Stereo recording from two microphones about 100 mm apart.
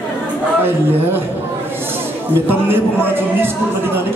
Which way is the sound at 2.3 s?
20° right (ahead or behind).